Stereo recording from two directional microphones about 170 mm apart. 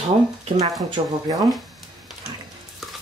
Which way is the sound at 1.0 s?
30° right (ahead or behind).